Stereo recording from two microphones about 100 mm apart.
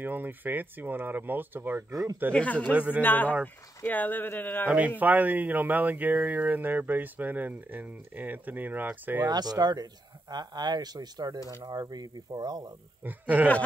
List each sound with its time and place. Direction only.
0.0 s speech: 20° right (ahead or behind)
1.9 s speech: 40° right (ahead or behind)
2.3 s speech: 15° left (ahead or behind)
2.7 s speech: 15° right (ahead or behind)
3.0 s speech: 20° left (ahead or behind)
4.6 s speech: 15° right (ahead or behind)
9.2 s speech: 45° right (ahead or behind)
13.0 s speech: 15° right (ahead or behind)